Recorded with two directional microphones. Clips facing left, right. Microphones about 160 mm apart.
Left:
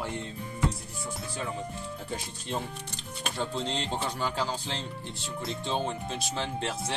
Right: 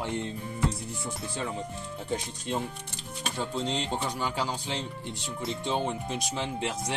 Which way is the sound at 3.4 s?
10° right (ahead or behind).